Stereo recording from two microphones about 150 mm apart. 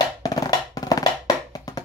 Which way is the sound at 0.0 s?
25° left (ahead or behind).